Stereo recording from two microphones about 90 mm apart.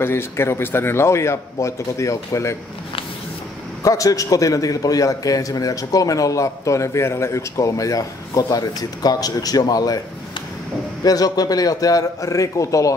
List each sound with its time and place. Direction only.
0.0 s a man's voice: 25° left (ahead or behind)
3.8 s a man's voice: 40° left (ahead or behind)
11.1 s a man's voice: 45° left (ahead or behind)